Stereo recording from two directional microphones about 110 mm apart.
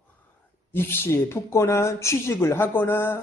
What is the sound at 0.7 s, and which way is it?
A man's voice, 20° left (ahead or behind).